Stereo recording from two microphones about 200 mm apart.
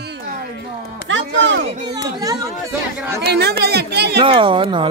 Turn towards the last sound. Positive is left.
turn(degrees=-25)  # may be behind; listen again after turning